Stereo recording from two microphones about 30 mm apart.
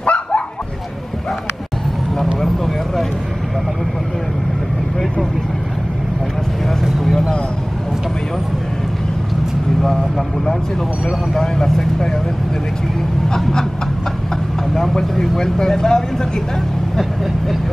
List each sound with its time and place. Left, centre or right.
0.0 s bow-wow: left
2.4 s vehicle: centre
7.1 s vehicle: centre
9.8 s vehicle: centre
13.3 s a sound: left
15.1 s vehicle: centre